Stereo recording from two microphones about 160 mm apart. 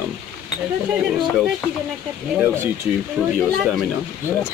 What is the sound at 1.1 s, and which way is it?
Speech, centre (ahead or behind).